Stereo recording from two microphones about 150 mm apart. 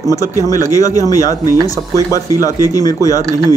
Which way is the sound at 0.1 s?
20° left (ahead or behind).